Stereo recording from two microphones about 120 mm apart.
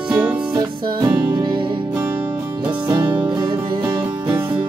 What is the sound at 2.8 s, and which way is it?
Music, 30° right (ahead or behind).